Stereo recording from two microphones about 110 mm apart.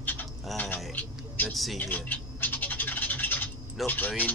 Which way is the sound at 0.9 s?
15° left (ahead or behind).